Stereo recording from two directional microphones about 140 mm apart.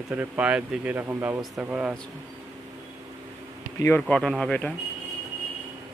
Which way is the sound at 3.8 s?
15° left (ahead or behind).